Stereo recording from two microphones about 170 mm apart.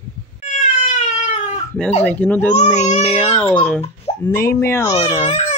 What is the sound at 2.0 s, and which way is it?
Speech, 10° left (ahead or behind).